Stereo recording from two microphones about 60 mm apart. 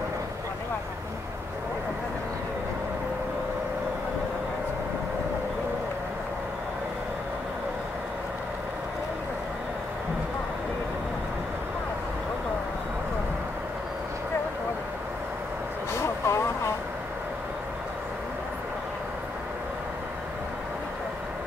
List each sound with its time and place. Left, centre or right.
15.9 s vehicle: left